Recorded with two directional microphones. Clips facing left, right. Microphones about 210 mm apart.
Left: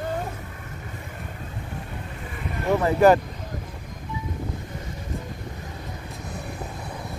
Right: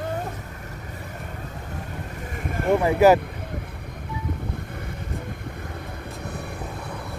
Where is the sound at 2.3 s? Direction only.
45° right (ahead or behind).